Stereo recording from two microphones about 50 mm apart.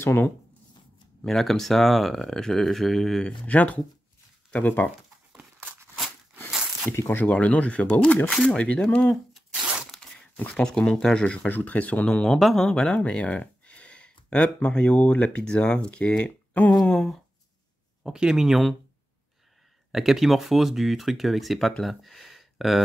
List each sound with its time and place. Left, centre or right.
0.0 s speech: left
1.2 s speech: centre
3.3 s speech: left
7.2 s speech: left
11.4 s speech: left; by 12.4 s centre
12.4 s speech: centre
12.6 s speech: centre
16.9 s speech: centre
18.0 s speech: centre
19.9 s speech: centre
21.8 s a sound: centre